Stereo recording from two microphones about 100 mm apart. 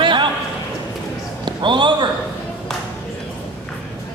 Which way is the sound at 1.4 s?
50° right (ahead or behind).